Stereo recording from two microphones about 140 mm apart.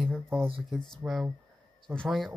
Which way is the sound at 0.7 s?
5° right (ahead or behind).